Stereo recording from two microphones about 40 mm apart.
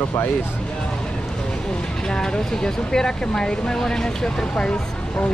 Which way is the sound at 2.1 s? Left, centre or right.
Centre.